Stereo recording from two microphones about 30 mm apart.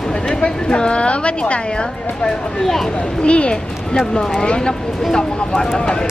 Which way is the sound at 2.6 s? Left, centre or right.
Centre.